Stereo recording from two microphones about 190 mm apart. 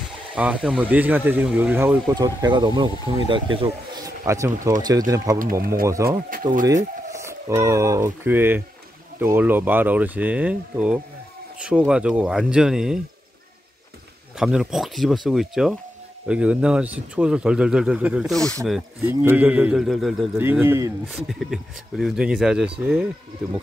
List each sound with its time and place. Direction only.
0.4 s speech: 5° right (ahead or behind)
5.4 s speech: 50° right (ahead or behind)
5.9 s speech: 15° right (ahead or behind)
7.1 s a sound: 15° right (ahead or behind)
7.6 s speech: 15° right (ahead or behind)
14.4 s speech: 5° right (ahead or behind)
20.3 s speech: 10° right (ahead or behind)
21.1 s speech: centre (ahead or behind)